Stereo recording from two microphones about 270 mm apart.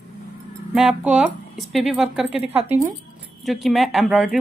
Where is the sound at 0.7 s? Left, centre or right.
Centre.